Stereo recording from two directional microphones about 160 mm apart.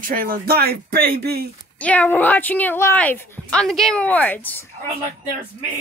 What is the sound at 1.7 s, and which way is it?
Speech, 10° left (ahead or behind).